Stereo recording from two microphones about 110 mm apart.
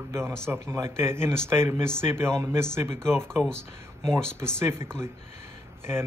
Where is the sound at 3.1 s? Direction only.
5° left (ahead or behind).